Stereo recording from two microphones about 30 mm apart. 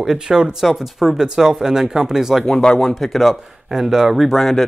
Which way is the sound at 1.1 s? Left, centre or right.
Right.